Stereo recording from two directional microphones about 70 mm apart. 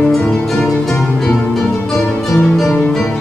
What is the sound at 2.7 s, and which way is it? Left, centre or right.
Music, centre.